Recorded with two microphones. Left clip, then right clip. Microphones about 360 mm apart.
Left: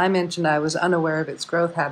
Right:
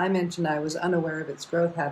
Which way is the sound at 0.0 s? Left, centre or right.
Left.